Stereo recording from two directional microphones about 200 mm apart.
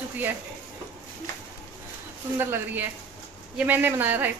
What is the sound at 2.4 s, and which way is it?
A woman's voice, 10° right (ahead or behind).